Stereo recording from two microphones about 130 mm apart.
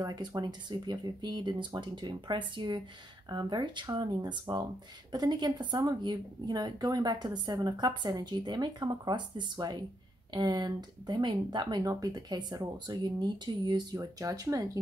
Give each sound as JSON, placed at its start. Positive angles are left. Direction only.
{"t": 0.0, "sound": "a woman's voice", "side_deg": -30}